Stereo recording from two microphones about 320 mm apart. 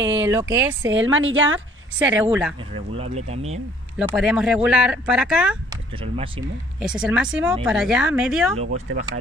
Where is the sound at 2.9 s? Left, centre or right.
Centre.